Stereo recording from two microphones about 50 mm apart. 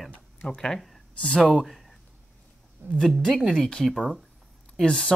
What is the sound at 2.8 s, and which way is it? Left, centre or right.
Speech, right.